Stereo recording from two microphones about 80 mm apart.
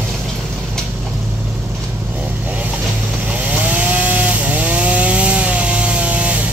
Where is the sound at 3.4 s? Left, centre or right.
Centre.